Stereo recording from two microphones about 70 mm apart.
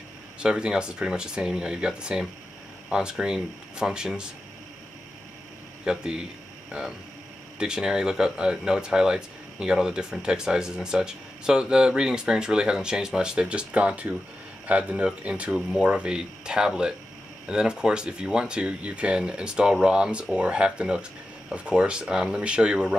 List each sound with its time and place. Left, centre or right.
0.4 s speech: centre
5.9 s speech: centre